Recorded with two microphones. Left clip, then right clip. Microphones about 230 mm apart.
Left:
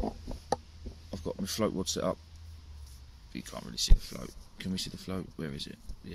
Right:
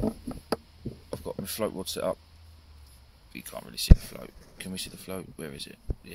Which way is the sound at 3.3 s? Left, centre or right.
Centre.